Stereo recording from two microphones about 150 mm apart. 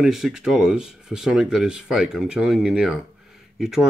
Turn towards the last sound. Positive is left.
turn(degrees=0)  # may be behind; listen again after turning